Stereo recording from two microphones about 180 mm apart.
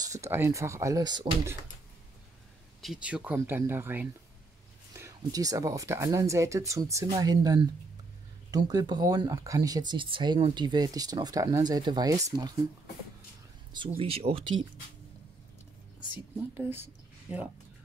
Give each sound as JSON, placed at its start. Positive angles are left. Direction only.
{"t": 0.0, "sound": "speech", "side_deg": -15}
{"t": 2.8, "sound": "speech", "side_deg": -5}
{"t": 13.7, "sound": "speech", "side_deg": -30}
{"t": 17.3, "sound": "speech", "side_deg": -5}